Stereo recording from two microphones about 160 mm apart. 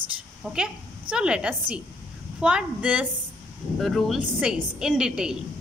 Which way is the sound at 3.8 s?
Centre (ahead or behind).